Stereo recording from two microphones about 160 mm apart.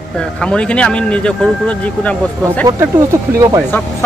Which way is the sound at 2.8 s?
15° right (ahead or behind).